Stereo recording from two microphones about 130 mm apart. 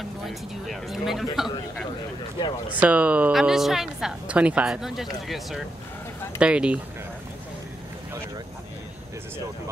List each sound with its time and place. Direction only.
0.3 s speech: centre (ahead or behind)
2.8 s speech: 10° right (ahead or behind)